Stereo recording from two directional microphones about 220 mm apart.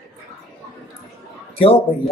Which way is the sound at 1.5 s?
25° left (ahead or behind).